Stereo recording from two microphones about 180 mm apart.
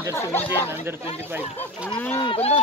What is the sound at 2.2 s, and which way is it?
Speech, 30° left (ahead or behind).